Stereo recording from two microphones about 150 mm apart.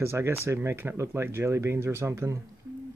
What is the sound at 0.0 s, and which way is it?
Speech, 15° right (ahead or behind).